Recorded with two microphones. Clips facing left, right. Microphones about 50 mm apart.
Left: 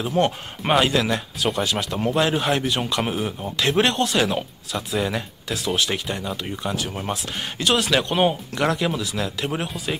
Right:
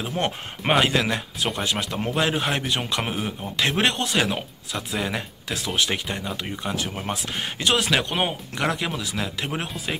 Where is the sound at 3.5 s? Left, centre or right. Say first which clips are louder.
Left 3 dB; right.